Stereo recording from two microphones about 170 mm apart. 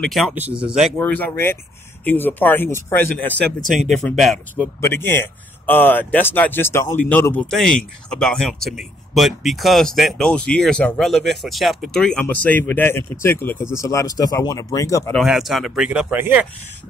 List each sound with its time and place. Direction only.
0.0 s speech: centre (ahead or behind)
0.3 s speech: 10° right (ahead or behind)
0.6 s speech: 30° right (ahead or behind)
0.8 s speech: 10° left (ahead or behind)
4.7 s speech: 15° left (ahead or behind)
15.1 s speech: centre (ahead or behind)